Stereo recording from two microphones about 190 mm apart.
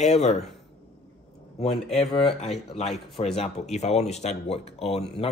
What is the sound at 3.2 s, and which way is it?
Speech, 25° left (ahead or behind).